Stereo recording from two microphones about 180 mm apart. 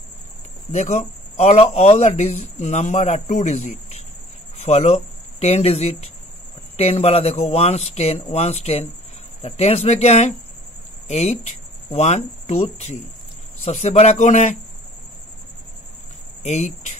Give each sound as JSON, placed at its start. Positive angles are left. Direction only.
{"t": 0.7, "sound": "speech", "side_deg": 40}
{"t": 16.4, "sound": "speech", "side_deg": 40}